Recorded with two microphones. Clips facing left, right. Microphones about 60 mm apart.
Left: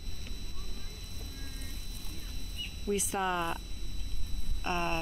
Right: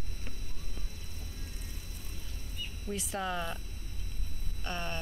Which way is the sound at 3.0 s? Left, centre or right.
Left.